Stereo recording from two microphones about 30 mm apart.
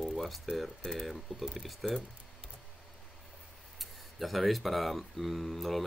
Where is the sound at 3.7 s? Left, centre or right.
Centre.